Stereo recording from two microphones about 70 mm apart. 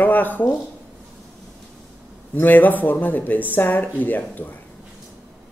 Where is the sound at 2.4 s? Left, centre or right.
Left.